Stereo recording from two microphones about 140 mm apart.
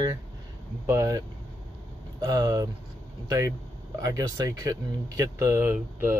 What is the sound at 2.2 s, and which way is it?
Speech, 25° right (ahead or behind).